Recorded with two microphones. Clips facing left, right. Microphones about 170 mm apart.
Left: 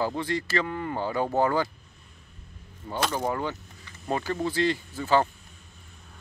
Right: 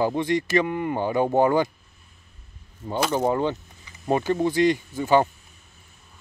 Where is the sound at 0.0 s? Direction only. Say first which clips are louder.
Right 5 dB; 20° right (ahead or behind).